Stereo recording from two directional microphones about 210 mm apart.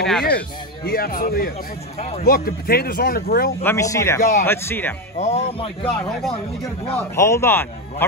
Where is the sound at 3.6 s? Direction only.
15° left (ahead or behind).